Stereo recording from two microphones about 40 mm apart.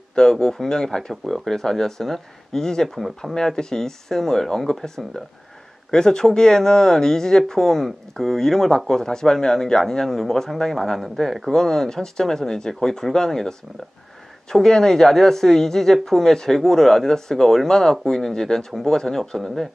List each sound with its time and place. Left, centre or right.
0.1 s speech: centre